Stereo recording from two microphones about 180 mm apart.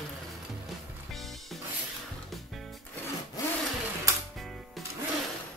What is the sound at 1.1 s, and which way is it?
Music, centre (ahead or behind).